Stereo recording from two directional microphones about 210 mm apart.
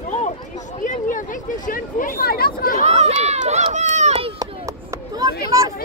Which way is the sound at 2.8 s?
30° right (ahead or behind).